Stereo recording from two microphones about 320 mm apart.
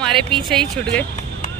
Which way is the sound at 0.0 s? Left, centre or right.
Centre.